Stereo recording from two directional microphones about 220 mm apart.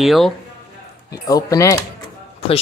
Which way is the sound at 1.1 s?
15° left (ahead or behind).